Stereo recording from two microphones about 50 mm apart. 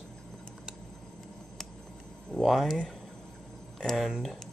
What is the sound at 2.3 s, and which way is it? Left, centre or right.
Speech, centre.